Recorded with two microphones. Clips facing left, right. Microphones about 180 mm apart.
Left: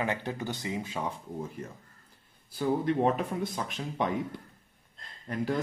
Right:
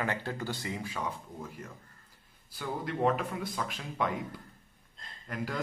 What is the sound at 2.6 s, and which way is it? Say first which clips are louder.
Speech: left 5 dB; 30° left (ahead or behind).